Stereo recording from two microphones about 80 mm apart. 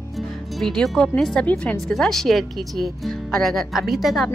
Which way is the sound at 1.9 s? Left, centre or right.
Centre.